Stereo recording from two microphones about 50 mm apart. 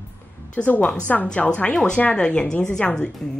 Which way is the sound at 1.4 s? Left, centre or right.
Left.